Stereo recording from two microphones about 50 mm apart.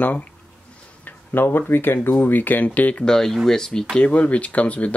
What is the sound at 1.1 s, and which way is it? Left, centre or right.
Speech, left.